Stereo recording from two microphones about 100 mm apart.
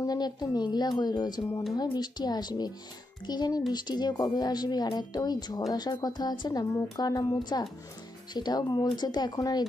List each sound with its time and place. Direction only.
0.0 s a woman's voice: 40° left (ahead or behind)